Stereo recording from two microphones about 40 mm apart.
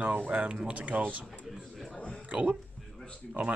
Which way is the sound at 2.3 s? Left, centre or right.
Right.